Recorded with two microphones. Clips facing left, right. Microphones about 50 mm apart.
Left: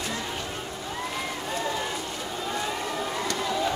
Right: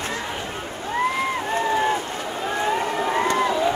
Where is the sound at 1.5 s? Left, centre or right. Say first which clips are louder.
Right 9 dB; right.